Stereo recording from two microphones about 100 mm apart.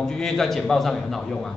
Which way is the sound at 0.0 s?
5° left (ahead or behind).